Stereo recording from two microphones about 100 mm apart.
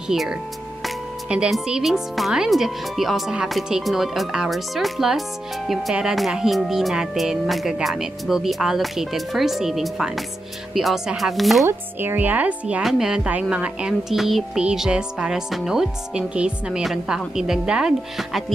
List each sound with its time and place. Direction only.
0.1 s speech: 5° right (ahead or behind)
11.6 s speech: 25° right (ahead or behind); by 18.4 s 5° right (ahead or behind)